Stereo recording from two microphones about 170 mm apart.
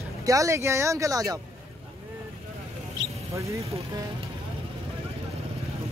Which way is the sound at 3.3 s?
20° right (ahead or behind).